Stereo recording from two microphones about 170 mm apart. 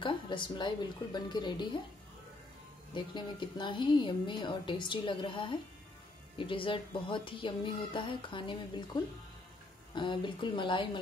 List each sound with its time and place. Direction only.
0.0 s speech: 30° left (ahead or behind)
2.9 s speech: 25° left (ahead or behind)